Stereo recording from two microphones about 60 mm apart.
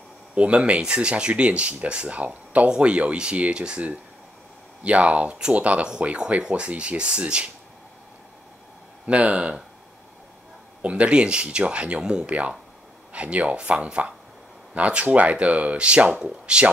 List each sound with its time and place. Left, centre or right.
0.3 s speech: centre
9.0 s speech: right
10.8 s speech: centre